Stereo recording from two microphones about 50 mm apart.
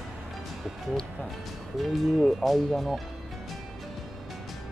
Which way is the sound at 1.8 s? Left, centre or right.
Centre.